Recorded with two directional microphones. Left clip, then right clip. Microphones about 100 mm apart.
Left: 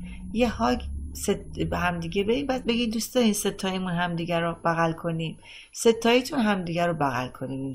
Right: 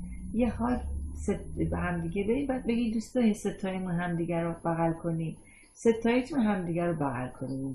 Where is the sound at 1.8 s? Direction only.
15° left (ahead or behind).